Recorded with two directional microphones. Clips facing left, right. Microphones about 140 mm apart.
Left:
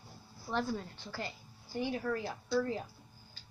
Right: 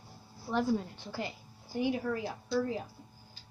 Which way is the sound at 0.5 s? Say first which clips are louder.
Right 5 dB; 15° right (ahead or behind).